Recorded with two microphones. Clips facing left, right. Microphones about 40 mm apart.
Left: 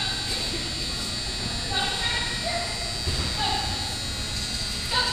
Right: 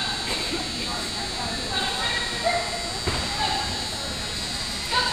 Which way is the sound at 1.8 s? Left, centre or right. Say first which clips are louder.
Right 1 dB; centre.